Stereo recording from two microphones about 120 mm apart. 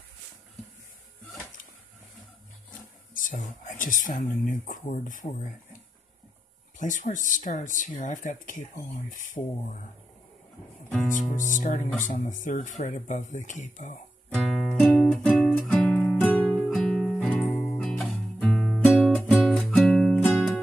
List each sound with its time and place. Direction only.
3.6 s speech: 90° left
6.8 s speech: 90° left
11.1 s speech: 90° left
14.3 s music: centre (ahead or behind)
14.8 s music: 10° left (ahead or behind)
15.7 s music: 10° left (ahead or behind)
17.5 s guitar: 10° left (ahead or behind)